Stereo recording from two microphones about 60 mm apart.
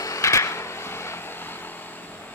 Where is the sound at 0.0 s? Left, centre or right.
Left.